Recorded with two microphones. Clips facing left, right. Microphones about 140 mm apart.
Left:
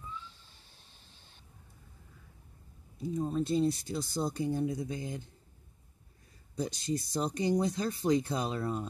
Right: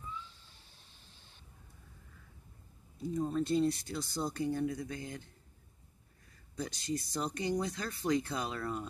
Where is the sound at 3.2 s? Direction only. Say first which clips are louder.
Left 1 dB; 15° left (ahead or behind).